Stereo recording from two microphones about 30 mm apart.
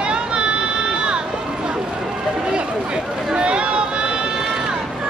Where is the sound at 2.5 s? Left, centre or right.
Right.